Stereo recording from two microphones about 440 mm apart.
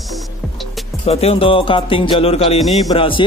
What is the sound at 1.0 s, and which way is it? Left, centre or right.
Music, centre.